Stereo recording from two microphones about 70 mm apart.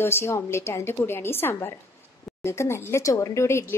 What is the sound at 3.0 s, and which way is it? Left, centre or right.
Speech, left.